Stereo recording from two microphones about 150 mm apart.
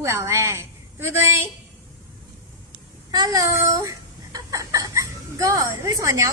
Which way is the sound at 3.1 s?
25° right (ahead or behind).